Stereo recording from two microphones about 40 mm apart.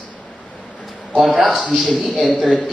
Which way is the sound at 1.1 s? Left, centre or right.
Centre.